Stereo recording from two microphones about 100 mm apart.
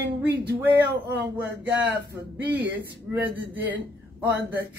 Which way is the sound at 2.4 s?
15° right (ahead or behind).